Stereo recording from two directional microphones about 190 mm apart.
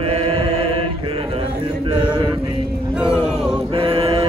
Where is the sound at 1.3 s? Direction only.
25° right (ahead or behind).